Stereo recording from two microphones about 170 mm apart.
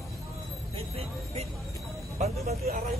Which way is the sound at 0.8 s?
35° right (ahead or behind).